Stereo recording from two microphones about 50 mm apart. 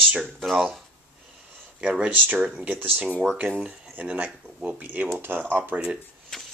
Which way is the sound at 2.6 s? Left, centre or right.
Right.